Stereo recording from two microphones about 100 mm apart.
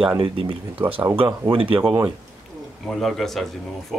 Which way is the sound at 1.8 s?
30° right (ahead or behind).